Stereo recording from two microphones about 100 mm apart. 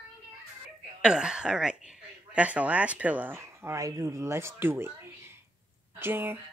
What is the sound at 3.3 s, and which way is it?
Speech, 30° right (ahead or behind).